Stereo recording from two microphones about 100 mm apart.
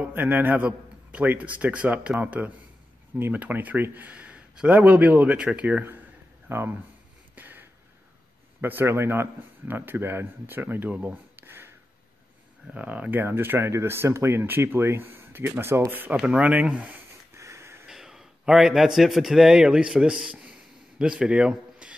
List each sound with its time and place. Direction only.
0.0 s speech: 15° right (ahead or behind)
7.3 s a sound: 20° right (ahead or behind)
8.5 s speech: 20° right (ahead or behind)
12.7 s speech: 15° right (ahead or behind)
17.4 s a sound: 30° right (ahead or behind)
17.8 s a man's voice: 5° right (ahead or behind)